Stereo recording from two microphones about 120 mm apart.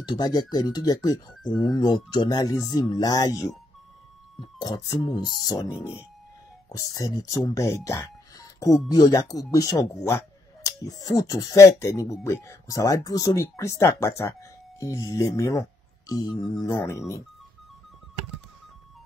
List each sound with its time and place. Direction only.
0.0 s speech: 35° left (ahead or behind)
6.9 s speech: 30° left (ahead or behind)
16.1 s speech: 35° left (ahead or behind)
16.6 s speech: 25° left (ahead or behind)